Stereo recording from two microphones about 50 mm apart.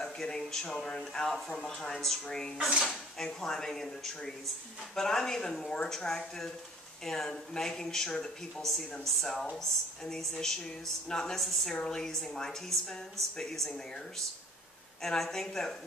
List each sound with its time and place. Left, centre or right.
0.0 s speech: centre
11.4 s a woman's voice: centre
11.7 s speech: centre
15.0 s speech: centre